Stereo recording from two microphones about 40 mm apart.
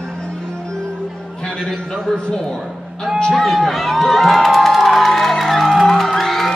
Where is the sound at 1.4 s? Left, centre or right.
Centre.